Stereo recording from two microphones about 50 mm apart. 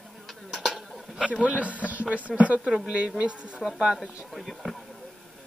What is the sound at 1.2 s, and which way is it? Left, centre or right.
A man's voice, right.